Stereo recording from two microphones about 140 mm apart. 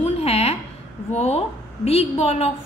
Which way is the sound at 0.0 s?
45° left (ahead or behind).